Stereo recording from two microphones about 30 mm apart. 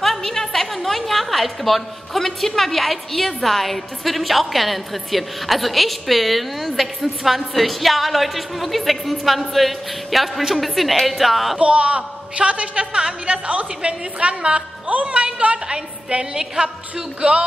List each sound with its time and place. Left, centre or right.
0.0 s a sound: centre
0.8 s a woman's voice: centre
11.5 s a woman's voice: right
16.3 s a woman's voice: right